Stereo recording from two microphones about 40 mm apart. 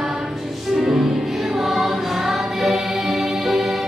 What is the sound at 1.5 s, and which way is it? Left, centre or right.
Choir, centre.